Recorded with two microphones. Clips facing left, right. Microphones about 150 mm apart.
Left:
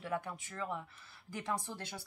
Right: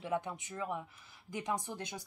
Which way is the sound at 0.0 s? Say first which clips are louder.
Right 2 dB; 20° right (ahead or behind).